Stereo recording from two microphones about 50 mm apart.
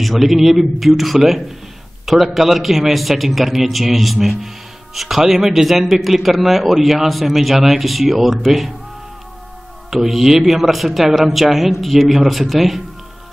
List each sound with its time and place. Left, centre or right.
0.0 s speech: centre
9.8 s speech: centre